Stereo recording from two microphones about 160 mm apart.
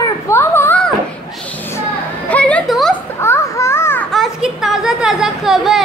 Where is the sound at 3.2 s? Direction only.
15° left (ahead or behind).